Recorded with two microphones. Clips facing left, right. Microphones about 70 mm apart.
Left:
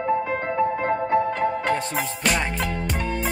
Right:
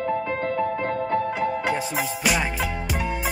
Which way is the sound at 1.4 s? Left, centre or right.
Centre.